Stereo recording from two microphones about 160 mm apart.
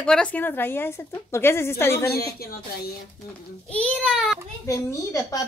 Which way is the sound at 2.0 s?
75° left (ahead or behind).